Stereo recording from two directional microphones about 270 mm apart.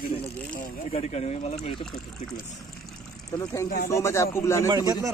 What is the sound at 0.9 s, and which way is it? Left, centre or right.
Speech, left.